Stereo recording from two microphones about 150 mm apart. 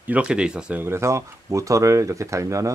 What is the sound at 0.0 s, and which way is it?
Speech, 10° right (ahead or behind).